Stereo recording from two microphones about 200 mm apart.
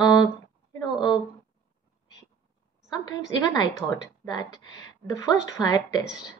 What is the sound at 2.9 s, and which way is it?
Speech, 20° left (ahead or behind).